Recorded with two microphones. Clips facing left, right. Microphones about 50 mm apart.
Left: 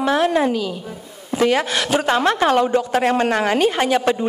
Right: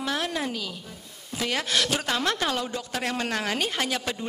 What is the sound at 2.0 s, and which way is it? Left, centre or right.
A woman's voice, left.